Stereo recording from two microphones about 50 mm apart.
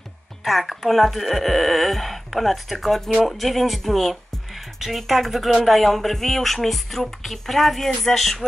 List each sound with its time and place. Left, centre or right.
0.4 s speech: centre